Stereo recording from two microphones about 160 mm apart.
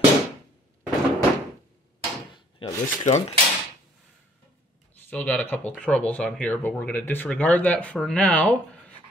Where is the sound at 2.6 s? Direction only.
35° left (ahead or behind).